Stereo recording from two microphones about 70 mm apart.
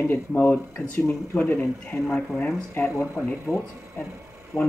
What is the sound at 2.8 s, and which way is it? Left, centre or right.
Speech, left.